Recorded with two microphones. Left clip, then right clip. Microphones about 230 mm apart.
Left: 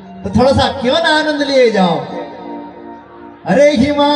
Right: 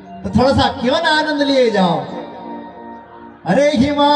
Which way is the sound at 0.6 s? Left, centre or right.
Centre.